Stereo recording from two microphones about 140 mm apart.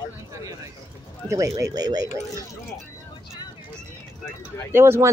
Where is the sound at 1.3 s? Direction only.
25° right (ahead or behind).